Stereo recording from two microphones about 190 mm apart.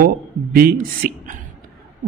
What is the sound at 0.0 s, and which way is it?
Speech, 50° right (ahead or behind).